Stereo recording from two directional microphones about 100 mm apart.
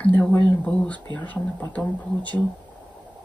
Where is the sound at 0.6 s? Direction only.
15° left (ahead or behind).